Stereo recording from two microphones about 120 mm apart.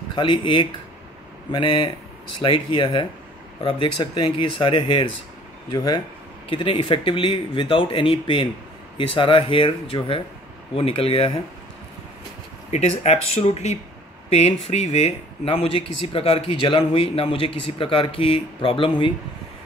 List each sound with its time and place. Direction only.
0.1 s speech: 45° left (ahead or behind)
5.7 s speech: 35° left (ahead or behind)
6.5 s speech: 45° left (ahead or behind)
12.7 s speech: 65° left (ahead or behind); by 19.1 s 45° left (ahead or behind)